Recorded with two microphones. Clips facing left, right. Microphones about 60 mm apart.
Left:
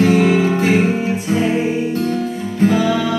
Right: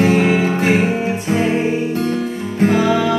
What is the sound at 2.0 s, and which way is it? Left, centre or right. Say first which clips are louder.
Music: even; right.